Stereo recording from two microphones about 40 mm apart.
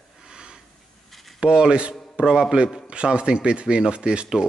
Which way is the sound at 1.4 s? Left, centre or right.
Right.